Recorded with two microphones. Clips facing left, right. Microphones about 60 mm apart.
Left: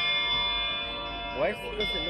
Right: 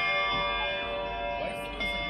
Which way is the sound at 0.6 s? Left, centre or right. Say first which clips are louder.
Right 3 dB; centre.